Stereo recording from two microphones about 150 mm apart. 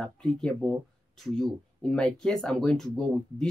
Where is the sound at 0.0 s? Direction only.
5° left (ahead or behind).